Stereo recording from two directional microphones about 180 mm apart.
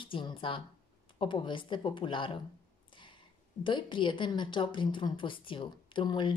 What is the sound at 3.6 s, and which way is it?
A woman's voice, 25° left (ahead or behind).